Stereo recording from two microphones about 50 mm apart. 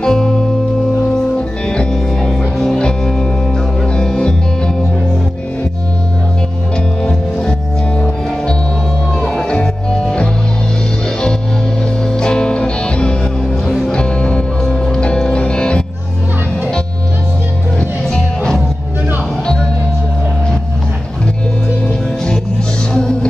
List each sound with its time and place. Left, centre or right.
0.0 s music: centre
1.7 s music: centre
7.0 s music: centre
9.2 s music: centre
12.1 s music: centre
13.7 s music: centre
13.9 s music: centre
17.7 s music: centre
21.8 s music: centre